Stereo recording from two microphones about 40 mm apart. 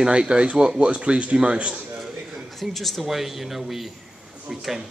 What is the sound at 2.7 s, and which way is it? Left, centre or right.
Speech, centre.